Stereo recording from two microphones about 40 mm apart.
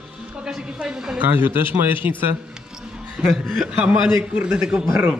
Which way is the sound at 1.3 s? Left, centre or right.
Right.